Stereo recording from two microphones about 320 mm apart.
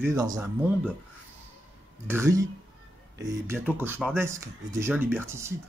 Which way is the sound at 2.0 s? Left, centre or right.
Centre.